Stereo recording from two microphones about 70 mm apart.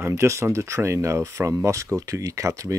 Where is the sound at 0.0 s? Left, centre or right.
Right.